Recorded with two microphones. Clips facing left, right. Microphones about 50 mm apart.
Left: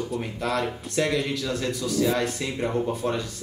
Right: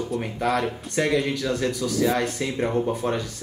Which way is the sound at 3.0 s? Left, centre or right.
Right.